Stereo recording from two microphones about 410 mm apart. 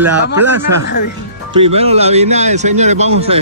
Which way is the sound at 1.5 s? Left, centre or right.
Centre.